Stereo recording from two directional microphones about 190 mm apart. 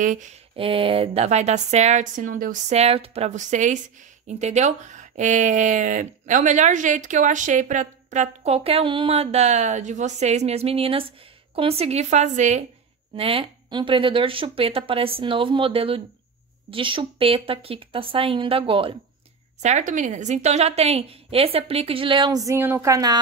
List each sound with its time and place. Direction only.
0.0 s speech: 40° right (ahead or behind)
19.6 s speech: 40° right (ahead or behind); by 23.1 s 15° right (ahead or behind)